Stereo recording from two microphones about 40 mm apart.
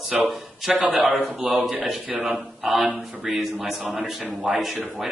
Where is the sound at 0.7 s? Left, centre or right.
Right.